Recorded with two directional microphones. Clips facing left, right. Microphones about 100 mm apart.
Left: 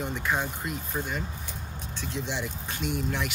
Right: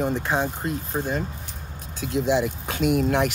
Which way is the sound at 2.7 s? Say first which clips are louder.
Right 10 dB; 70° right (ahead or behind).